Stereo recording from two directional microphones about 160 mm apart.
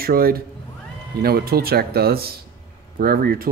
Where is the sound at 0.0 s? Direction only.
70° right (ahead or behind).